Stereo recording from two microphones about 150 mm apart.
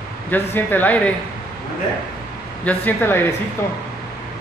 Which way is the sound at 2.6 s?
10° left (ahead or behind).